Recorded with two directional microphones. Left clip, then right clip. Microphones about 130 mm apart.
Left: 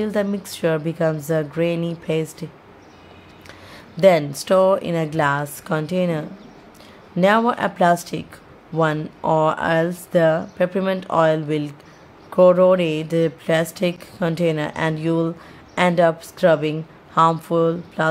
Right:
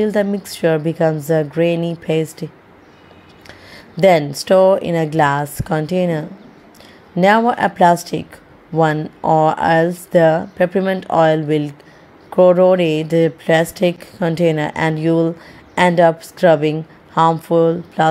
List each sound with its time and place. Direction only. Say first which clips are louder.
0.0 s speech: right 5 dB; 15° right (ahead or behind)